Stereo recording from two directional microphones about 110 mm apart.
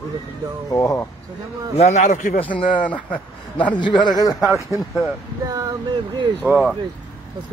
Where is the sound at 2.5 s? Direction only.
45° left (ahead or behind).